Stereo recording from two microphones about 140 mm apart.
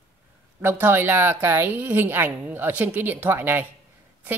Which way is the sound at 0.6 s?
15° right (ahead or behind).